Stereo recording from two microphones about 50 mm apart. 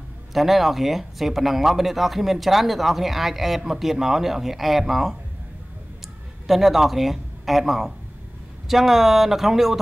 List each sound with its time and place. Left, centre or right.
0.3 s speech: centre
6.4 s speech: centre